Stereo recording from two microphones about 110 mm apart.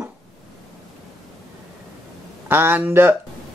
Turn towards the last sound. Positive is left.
turn(degrees=-20)  # may be behind; listen again after turning